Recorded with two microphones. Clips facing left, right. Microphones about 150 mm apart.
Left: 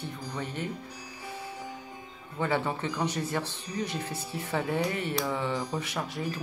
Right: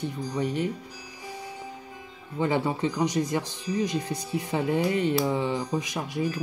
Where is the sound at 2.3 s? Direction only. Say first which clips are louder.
Right 3 dB; 15° right (ahead or behind).